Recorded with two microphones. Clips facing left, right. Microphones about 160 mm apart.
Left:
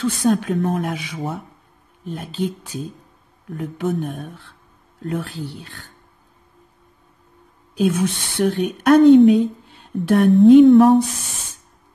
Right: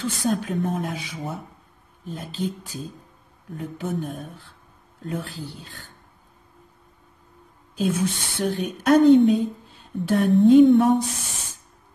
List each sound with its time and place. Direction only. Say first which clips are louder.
0.0 s a woman's voice: left 6 dB; 70° left (ahead or behind)
3.5 s a woman's voice: left 5 dB; 75° left (ahead or behind)
7.7 s a woman's voice: left 4 dB; 70° left (ahead or behind)